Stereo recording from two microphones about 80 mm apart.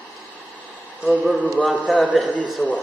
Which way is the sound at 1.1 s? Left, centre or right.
Centre.